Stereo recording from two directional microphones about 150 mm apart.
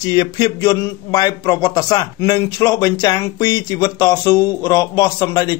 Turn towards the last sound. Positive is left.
turn(degrees=25)  # may be behind; listen again after turning